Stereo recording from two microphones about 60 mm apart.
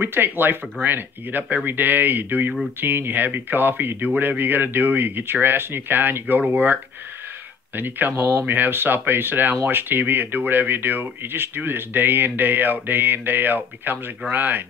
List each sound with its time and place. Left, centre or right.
0.0 s speech: right